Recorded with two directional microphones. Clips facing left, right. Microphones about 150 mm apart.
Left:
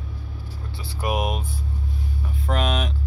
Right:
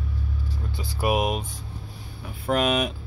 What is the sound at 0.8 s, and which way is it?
Speech, 10° right (ahead or behind).